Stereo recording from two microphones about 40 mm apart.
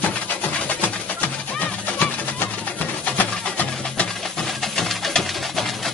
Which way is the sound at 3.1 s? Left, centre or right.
Left.